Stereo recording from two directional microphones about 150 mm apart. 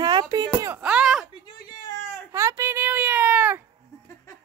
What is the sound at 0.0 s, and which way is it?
Chop, 25° right (ahead or behind).